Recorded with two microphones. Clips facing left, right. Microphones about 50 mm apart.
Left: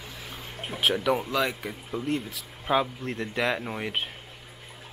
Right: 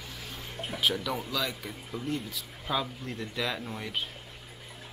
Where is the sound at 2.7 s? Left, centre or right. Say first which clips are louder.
Left 7 dB; left.